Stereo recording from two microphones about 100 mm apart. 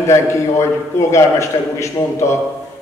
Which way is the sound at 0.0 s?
30° left (ahead or behind).